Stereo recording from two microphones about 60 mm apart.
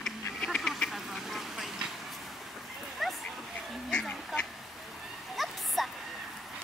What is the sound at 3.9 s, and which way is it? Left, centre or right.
Duck, centre.